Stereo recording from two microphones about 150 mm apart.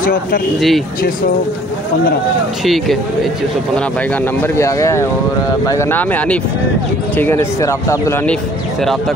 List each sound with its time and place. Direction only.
0.0 s speech: 70° left (ahead or behind)
0.6 s speech: centre (ahead or behind)
2.6 s speech: centre (ahead or behind)
4.4 s speech: 20° left (ahead or behind)